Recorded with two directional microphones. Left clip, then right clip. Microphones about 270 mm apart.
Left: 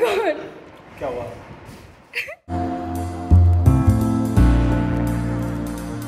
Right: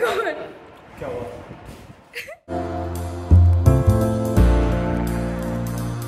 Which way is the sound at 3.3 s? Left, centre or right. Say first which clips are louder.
Even; centre.